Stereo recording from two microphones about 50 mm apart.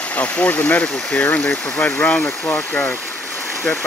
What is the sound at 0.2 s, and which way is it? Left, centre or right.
Speech, left.